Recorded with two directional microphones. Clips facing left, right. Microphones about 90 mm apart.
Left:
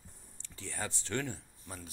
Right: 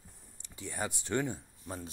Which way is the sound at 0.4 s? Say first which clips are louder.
Right 3 dB; 15° right (ahead or behind).